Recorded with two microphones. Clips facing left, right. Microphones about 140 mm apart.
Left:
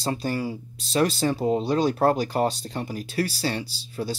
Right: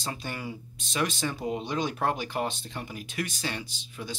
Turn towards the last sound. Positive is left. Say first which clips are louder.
# left 8 dB
turn(degrees=35)  # may be behind; listen again after turning